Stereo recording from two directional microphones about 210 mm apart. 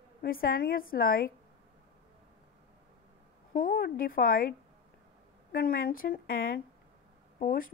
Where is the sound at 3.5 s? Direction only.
45° left (ahead or behind).